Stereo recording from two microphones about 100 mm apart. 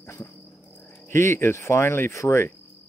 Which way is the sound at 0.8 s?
20° left (ahead or behind).